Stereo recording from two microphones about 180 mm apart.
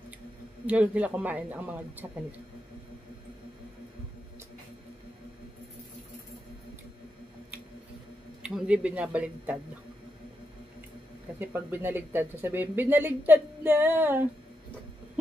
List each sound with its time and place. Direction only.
0.7 s speech: 5° right (ahead or behind)
8.4 s speech: 5° right (ahead or behind)
11.3 s speech: 10° right (ahead or behind)